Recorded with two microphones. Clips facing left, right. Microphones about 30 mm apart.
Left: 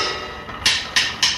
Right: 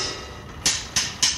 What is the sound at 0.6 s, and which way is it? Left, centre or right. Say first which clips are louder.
Music: left 7 dB; left.